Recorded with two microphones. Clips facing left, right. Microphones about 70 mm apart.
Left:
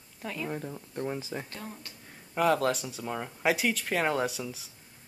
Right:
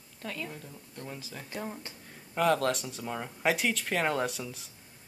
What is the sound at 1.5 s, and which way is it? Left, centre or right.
Speech, centre.